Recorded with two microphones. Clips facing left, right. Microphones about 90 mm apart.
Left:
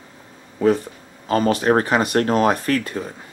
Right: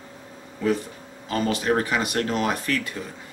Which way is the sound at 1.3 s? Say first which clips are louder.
Left 6 dB; 45° left (ahead or behind).